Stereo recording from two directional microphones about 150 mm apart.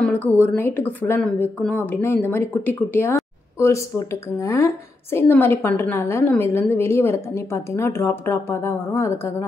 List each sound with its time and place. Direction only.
0.6 s a woman's voice: 15° left (ahead or behind)